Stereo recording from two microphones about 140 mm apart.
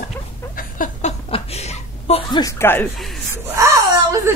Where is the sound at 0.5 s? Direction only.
75° left (ahead or behind).